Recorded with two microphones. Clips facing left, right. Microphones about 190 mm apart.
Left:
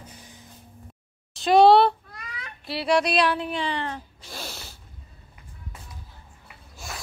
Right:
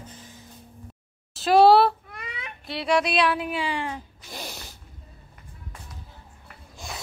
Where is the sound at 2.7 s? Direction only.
Centre (ahead or behind).